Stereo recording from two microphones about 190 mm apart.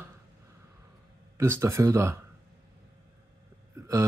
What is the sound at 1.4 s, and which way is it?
Speech, 15° right (ahead or behind).